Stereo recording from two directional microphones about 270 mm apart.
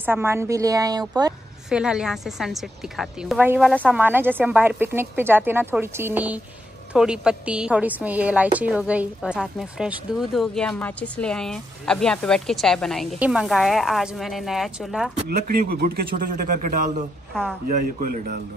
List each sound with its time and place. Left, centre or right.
0.0 s a woman's voice: centre
1.7 s a woman's voice: centre
15.2 s a man's voice: right
17.3 s speech: centre
17.6 s a man's voice: right